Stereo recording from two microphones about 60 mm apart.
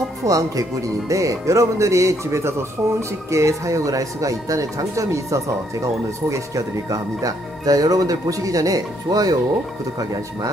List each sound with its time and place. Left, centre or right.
0.2 s speech: right